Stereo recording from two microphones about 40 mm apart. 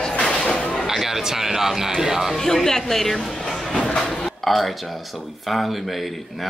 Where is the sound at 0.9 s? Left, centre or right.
Centre.